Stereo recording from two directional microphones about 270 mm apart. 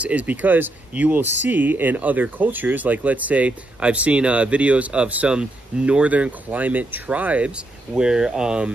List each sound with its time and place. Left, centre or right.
0.0 s speech: centre